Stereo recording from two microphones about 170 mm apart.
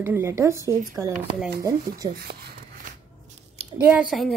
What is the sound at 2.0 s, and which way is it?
Speech, 35° right (ahead or behind).